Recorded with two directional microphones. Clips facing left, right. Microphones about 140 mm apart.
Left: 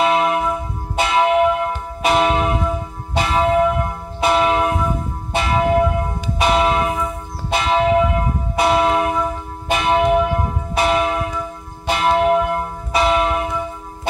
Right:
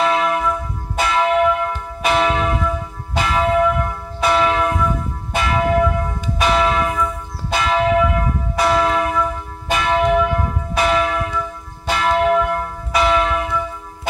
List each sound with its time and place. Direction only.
0.0 s church bell: 25° left (ahead or behind)